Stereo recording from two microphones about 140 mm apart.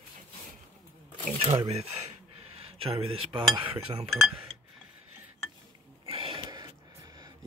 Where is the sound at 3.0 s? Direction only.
35° right (ahead or behind).